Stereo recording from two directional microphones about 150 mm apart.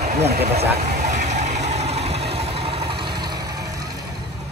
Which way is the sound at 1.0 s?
50° right (ahead or behind).